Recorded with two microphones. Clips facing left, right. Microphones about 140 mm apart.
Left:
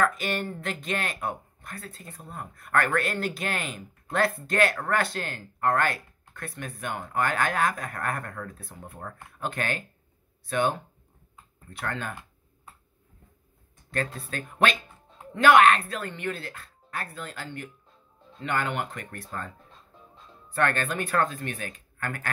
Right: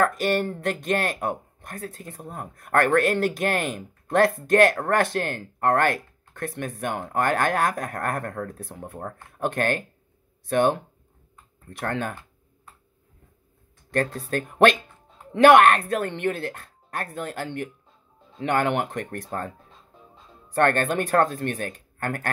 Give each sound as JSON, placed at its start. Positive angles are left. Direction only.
{"t": 0.0, "sound": "speech", "side_deg": -50}
{"t": 11.8, "sound": "speech", "side_deg": -50}
{"t": 14.5, "sound": "speech", "side_deg": -55}
{"t": 20.5, "sound": "speech", "side_deg": -50}